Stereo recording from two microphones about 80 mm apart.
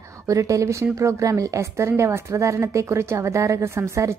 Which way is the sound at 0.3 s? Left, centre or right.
Right.